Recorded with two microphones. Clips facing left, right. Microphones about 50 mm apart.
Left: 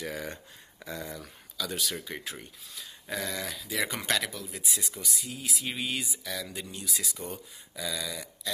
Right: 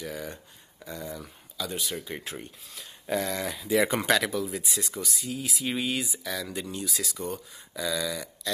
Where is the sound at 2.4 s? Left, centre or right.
Right.